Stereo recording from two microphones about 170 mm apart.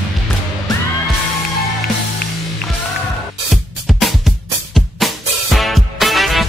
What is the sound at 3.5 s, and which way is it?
Music, centre (ahead or behind).